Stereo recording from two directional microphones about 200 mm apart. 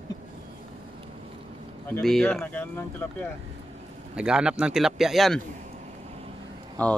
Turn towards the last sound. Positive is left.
turn(degrees=5)  # may be behind; listen again after turning